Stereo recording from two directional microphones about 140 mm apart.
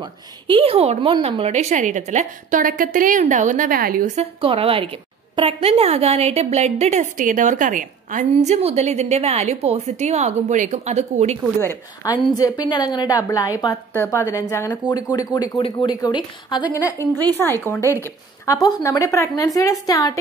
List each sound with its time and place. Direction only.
0.0 s a woman's voice: 40° right (ahead or behind); by 4.2 s 80° right
4.2 s a woman's voice: 40° right (ahead or behind)
11.6 s speech: 25° left (ahead or behind)
15.0 s a woman's voice: 25° left (ahead or behind)